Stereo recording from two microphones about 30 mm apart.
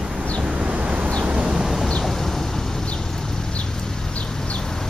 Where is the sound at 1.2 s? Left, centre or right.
Right.